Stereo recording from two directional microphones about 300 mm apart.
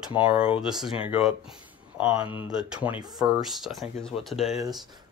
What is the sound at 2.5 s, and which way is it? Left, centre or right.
Speech, centre.